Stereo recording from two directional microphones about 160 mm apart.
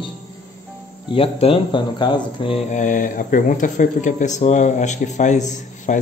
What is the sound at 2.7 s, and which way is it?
Speech, 55° left (ahead or behind).